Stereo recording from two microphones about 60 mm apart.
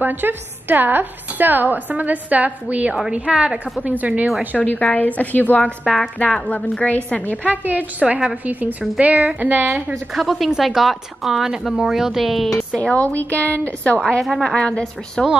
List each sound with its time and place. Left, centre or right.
0.0 s a woman's voice: right
2.9 s a woman's voice: centre
4.6 s a woman's voice: left
5.6 s a woman's voice: centre
6.9 s a woman's voice: left
7.4 s a woman's voice: right
10.1 s a woman's voice: centre
12.9 s a woman's voice: left
14.2 s a woman's voice: centre
14.5 s a woman's voice: centre